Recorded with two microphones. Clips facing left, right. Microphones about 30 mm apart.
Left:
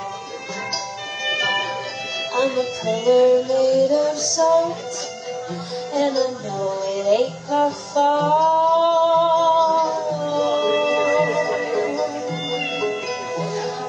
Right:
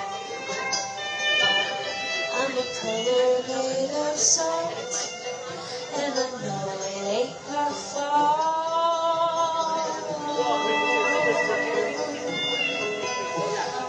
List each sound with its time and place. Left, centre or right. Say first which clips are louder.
1.4 s music: left 1 dB; centre
2.9 s music: left 7 dB; centre
3.6 s music: left 9 dB; left
6.9 s speech: left 9 dB; centre
7.9 s music: left 5 dB; centre
10.5 s music: left 3 dB; centre